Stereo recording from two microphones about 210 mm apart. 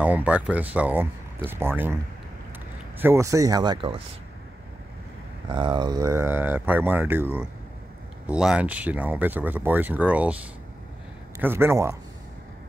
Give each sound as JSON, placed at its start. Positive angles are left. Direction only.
{"t": 0.0, "sound": "speech", "side_deg": -5}
{"t": 3.0, "sound": "speech", "side_deg": -10}
{"t": 5.5, "sound": "speech", "side_deg": -20}
{"t": 11.4, "sound": "speech", "side_deg": -10}